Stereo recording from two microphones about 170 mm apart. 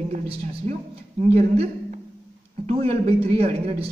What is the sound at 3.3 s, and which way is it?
Speech, 35° right (ahead or behind).